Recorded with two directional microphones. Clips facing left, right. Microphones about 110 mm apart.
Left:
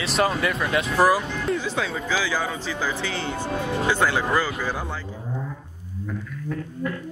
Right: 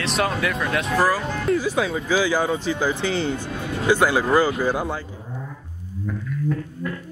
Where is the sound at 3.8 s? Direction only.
10° right (ahead or behind).